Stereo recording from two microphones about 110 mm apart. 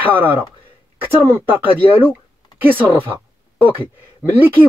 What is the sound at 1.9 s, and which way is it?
Speech, 15° right (ahead or behind).